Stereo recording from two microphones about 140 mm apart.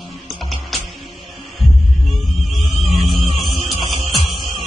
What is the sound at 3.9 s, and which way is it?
Music, 45° right (ahead or behind).